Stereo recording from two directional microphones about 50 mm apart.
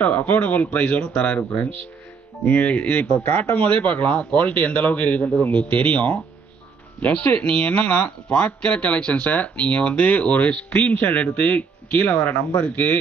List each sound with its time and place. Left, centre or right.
0.0 s speech: left
2.4 s speech: left